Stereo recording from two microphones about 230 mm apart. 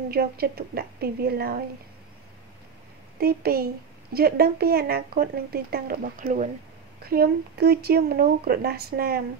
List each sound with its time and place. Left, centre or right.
0.1 s speech: right
3.2 s speech: right